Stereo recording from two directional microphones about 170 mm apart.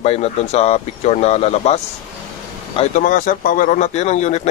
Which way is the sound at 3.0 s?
50° left (ahead or behind).